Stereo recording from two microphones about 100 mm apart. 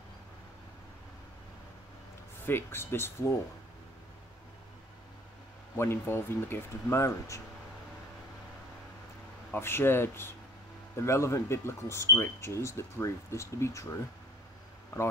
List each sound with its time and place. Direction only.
2.4 s speech: 20° left (ahead or behind)
5.8 s speech: 25° left (ahead or behind)
9.5 s speech: 25° left (ahead or behind)